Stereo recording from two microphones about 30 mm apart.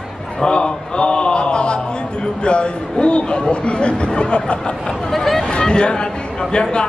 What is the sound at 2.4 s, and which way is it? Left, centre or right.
Speech, left.